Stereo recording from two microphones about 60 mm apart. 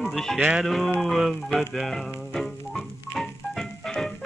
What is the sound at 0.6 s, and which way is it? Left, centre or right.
Speech, centre.